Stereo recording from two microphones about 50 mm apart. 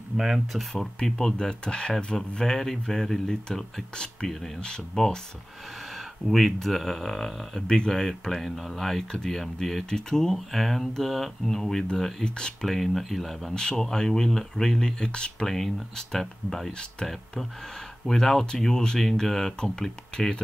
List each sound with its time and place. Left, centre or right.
0.2 s speech: centre
0.9 s speech: centre
6.2 s speech: centre
12.6 s speech: centre
13.6 s speech: centre
15.4 s speech: centre